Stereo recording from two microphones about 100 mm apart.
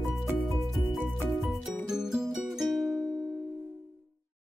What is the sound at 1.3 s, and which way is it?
Music, centre (ahead or behind).